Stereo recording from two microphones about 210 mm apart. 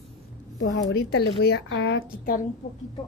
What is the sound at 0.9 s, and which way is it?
A woman's voice, 50° left (ahead or behind).